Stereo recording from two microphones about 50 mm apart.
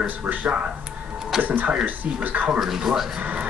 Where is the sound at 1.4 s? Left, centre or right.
Right.